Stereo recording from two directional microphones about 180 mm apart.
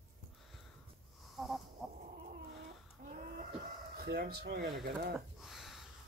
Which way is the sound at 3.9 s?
60° right (ahead or behind).